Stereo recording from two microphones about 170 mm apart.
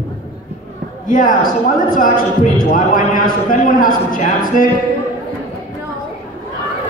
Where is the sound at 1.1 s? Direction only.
55° left (ahead or behind).